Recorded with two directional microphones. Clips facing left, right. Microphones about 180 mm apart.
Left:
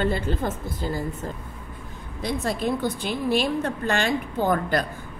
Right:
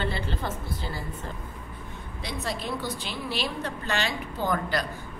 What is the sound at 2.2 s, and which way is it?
A woman's voice, 50° left (ahead or behind).